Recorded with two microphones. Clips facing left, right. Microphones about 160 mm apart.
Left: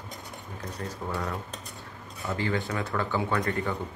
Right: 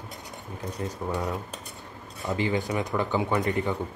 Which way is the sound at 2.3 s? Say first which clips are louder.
Right 3 dB; 15° right (ahead or behind).